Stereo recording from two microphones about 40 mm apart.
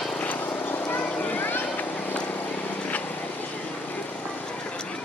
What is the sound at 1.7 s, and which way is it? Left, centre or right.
Vehicle, left.